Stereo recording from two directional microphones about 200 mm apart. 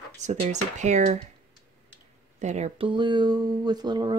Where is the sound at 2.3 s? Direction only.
35° right (ahead or behind).